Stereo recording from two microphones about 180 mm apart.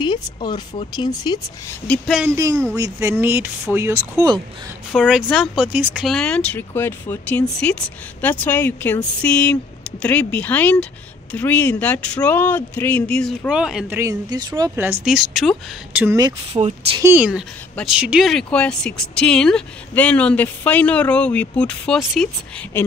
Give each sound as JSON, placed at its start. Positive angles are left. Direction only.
{"t": 0.0, "sound": "speech", "side_deg": 25}
{"t": 1.9, "sound": "speech", "side_deg": 0}
{"t": 2.2, "sound": "speech", "side_deg": -15}
{"t": 4.9, "sound": "speech", "side_deg": 0}
{"t": 13.5, "sound": "speech", "side_deg": -5}
{"t": 13.9, "sound": "speech", "side_deg": -20}
{"t": 14.8, "sound": "speech", "side_deg": -5}
{"t": 16.0, "sound": "speech", "side_deg": -15}
{"t": 17.1, "sound": "speech", "side_deg": -5}